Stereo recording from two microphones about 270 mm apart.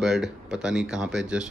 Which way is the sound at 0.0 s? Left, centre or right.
Centre.